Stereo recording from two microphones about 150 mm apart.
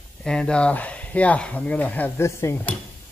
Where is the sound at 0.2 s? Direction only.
5° left (ahead or behind).